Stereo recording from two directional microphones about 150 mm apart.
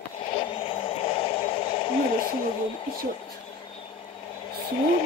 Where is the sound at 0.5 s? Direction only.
35° left (ahead or behind).